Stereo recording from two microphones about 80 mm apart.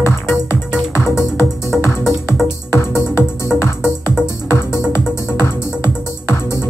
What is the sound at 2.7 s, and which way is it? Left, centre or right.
Music, left.